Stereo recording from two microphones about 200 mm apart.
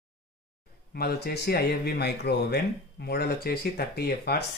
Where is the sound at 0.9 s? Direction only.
55° left (ahead or behind).